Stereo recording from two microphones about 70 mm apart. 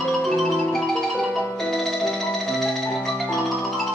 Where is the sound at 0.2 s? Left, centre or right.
Centre.